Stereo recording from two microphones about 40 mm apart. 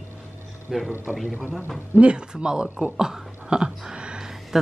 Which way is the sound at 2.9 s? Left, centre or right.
Centre.